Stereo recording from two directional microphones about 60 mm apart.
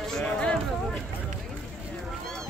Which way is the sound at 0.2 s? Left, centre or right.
Centre.